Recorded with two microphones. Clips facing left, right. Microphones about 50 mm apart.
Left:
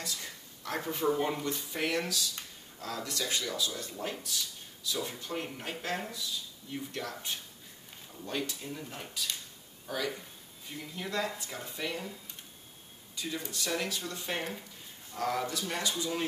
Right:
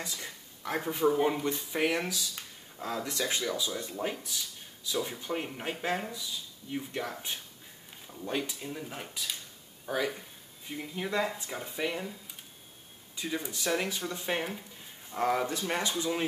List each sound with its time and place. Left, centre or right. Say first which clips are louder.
0.0 s speech: right 1 dB; centre